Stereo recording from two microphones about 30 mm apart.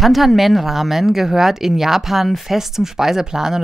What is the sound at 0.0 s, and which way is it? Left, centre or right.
Speech, centre.